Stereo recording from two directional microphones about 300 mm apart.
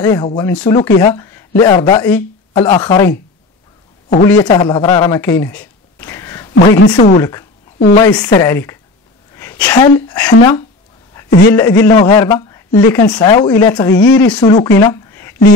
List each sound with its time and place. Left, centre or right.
0.0 s speech: centre
4.3 s speech: centre
14.8 s a sound: centre